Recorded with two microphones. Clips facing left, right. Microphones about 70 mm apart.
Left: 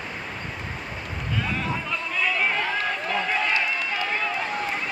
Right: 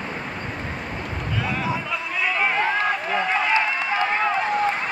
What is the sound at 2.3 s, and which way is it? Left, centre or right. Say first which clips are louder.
Run: right 5 dB; centre.